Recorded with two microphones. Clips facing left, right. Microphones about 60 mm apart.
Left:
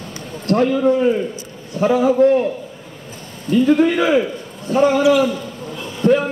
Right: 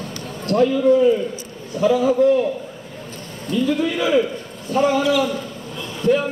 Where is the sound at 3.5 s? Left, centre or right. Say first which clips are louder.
Left 6 dB; left.